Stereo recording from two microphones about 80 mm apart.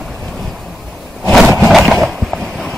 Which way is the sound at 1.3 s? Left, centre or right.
Centre.